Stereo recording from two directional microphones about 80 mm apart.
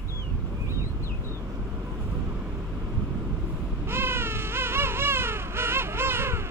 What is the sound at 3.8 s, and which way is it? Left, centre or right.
Baby cry, right.